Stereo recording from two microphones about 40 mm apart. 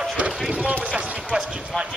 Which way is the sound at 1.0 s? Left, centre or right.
Right.